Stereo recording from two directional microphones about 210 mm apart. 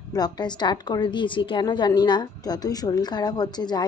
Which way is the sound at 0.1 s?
20° left (ahead or behind).